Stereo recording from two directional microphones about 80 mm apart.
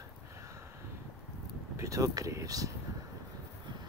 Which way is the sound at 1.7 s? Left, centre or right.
Right.